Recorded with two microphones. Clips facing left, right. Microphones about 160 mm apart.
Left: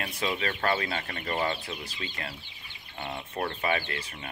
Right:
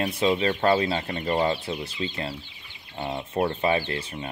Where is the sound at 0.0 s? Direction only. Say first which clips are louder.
Right 8 dB; 30° right (ahead or behind).